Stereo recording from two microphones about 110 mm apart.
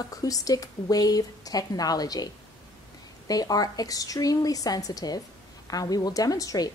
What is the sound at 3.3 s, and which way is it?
A woman's voice, 35° left (ahead or behind).